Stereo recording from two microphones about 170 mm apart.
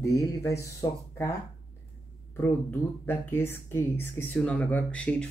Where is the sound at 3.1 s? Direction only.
15° left (ahead or behind).